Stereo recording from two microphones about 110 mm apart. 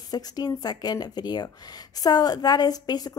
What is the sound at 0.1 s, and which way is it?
Speech, 35° left (ahead or behind).